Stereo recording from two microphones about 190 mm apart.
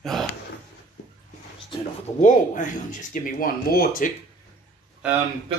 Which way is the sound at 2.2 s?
40° left (ahead or behind).